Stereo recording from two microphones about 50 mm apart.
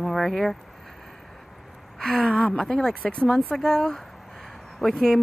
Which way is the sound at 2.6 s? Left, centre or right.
Centre.